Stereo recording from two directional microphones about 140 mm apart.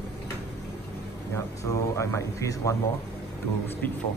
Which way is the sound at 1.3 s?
20° left (ahead or behind).